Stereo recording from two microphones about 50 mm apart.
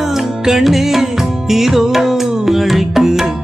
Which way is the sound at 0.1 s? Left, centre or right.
Centre.